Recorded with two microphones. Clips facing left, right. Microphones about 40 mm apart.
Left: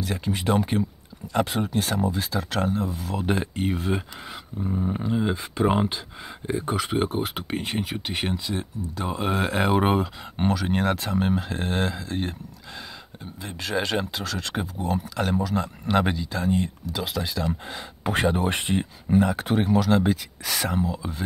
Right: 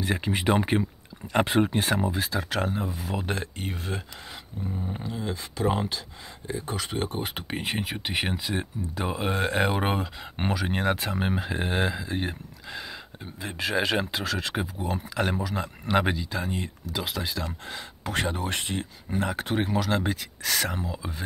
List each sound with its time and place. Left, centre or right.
0.0 s speech: right
2.1 s speech: centre
3.3 s speech: centre
4.9 s speech: left
6.7 s speech: centre
9.1 s speech: centre
10.3 s speech: centre
18.0 s speech: centre
19.1 s speech: centre